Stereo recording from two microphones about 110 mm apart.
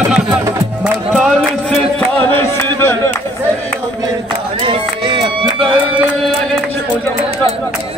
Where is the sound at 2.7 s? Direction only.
20° left (ahead or behind).